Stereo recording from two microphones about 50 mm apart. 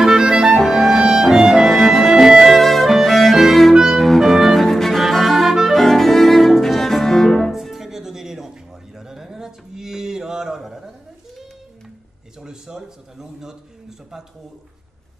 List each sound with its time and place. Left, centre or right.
0.0 s clarinet: centre
0.6 s music: centre
2.5 s music: centre
7.5 s music: centre
8.9 s a sound: centre
12.4 s a sound: centre